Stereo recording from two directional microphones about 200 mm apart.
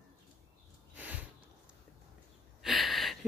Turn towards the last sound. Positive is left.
turn(degrees=0)  # may be behind; listen again after turning